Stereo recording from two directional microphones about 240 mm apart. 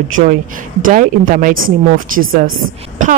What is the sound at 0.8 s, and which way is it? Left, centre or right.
Speech, right.